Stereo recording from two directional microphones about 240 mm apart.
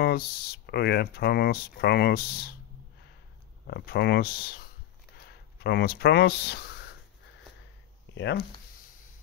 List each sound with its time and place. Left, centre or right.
0.0 s speech: left
3.6 s speech: left
8.1 s speech: left